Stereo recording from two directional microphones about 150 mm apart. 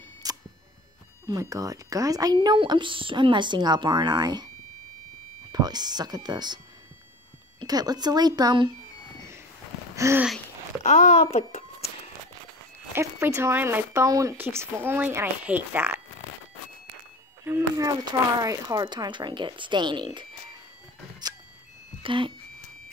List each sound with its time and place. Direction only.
0.2 s camera: 25° right (ahead or behind)
1.3 s a woman's voice: 25° right (ahead or behind)
5.5 s speech: 25° right (ahead or behind)
7.6 s speech: 25° right (ahead or behind)
9.9 s a sound: 20° right (ahead or behind)
10.8 s a child's voice: 50° left (ahead or behind)
12.9 s speech: 15° right (ahead or behind)
17.5 s a woman's voice: 20° right (ahead or behind)
22.0 s speech: 35° right (ahead or behind)